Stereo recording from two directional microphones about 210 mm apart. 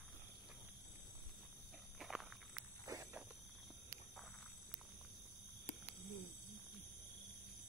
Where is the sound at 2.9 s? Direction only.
15° right (ahead or behind).